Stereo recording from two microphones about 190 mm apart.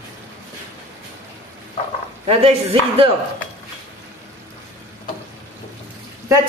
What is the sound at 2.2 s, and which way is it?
Speech, 35° right (ahead or behind).